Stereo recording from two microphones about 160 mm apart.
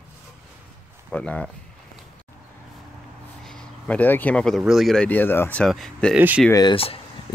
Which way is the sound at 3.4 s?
10° left (ahead or behind).